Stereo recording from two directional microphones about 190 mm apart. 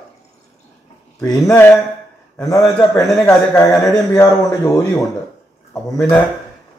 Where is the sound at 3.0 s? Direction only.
5° left (ahead or behind).